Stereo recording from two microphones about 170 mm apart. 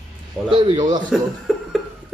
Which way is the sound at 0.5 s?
30° right (ahead or behind).